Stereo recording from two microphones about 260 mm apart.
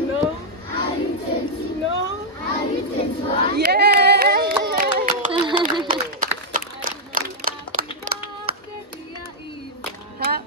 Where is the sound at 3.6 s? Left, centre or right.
Right.